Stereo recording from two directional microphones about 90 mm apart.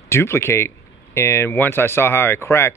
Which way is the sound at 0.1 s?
30° left (ahead or behind).